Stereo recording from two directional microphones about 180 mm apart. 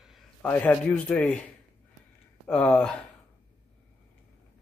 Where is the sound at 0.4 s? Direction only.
10° left (ahead or behind).